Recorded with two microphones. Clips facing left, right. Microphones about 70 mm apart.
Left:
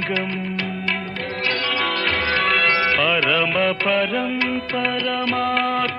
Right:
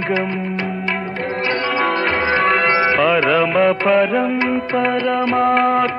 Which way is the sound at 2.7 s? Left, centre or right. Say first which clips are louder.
Right 4 dB; right.